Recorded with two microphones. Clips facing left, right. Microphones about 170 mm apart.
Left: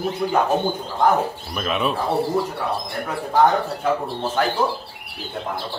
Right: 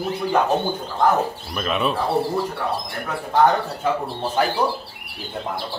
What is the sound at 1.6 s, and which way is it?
Speech, centre (ahead or behind).